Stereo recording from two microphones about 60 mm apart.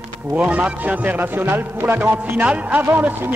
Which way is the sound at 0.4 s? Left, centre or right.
Right.